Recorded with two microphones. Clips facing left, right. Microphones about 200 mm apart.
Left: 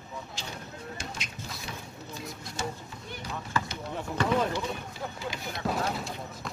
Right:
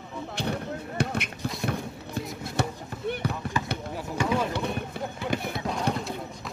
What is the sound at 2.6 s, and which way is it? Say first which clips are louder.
Chop: right 6 dB; 60° right (ahead or behind).